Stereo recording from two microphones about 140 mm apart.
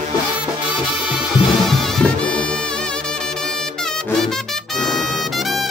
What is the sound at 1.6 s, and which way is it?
Music, centre (ahead or behind).